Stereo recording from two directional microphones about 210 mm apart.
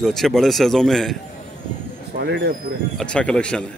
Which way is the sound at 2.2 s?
50° right (ahead or behind).